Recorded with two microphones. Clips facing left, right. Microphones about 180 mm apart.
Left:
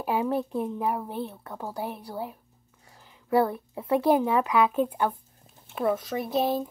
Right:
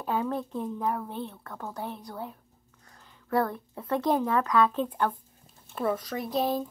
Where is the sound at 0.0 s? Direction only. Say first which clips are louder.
Left 3 dB; 10° left (ahead or behind).